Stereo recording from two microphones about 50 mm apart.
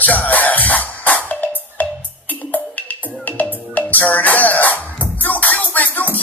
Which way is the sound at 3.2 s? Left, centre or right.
Left.